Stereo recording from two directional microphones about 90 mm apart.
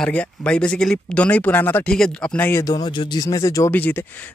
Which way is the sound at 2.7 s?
45° left (ahead or behind).